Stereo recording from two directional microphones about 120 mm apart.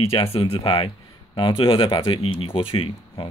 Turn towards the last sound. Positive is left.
turn(degrees=50)  # may be behind; listen again after turning